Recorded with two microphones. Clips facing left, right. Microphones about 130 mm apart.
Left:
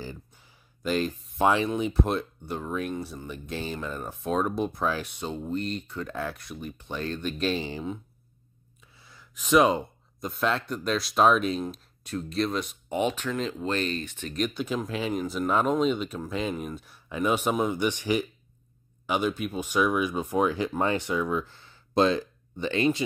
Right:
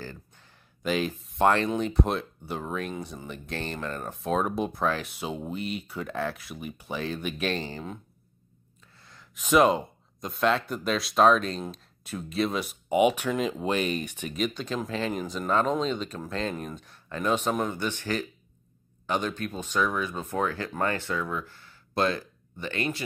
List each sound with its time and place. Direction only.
0.0 s a sound: 15° left (ahead or behind)
0.8 s speech: centre (ahead or behind)
8.9 s speech: 5° left (ahead or behind); by 14.3 s 15° right (ahead or behind)
14.3 s speech: 5° left (ahead or behind); by 23.0 s 20° left (ahead or behind)